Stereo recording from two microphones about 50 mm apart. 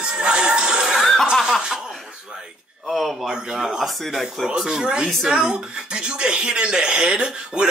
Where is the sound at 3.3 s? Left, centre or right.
Centre.